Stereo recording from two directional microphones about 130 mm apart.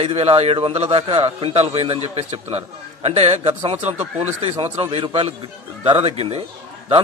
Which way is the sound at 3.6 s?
40° right (ahead or behind).